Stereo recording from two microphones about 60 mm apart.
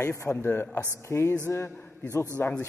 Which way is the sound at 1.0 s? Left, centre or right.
Left.